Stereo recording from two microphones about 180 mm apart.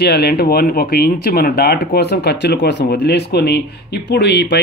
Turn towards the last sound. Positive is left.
turn(degrees=75)  # may be behind; listen again after turning